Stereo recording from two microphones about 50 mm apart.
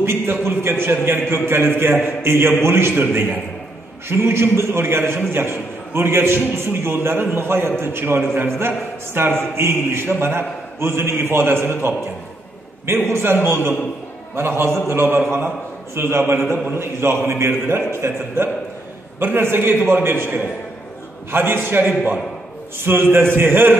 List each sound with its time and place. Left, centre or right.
0.0 s a man's voice: right
4.1 s a man's voice: right